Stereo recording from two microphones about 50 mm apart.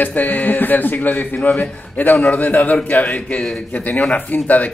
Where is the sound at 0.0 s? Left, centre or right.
Left.